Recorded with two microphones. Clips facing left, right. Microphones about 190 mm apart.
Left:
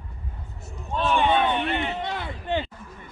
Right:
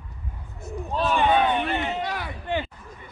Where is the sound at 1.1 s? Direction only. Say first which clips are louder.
Right 1 dB; 10° right (ahead or behind).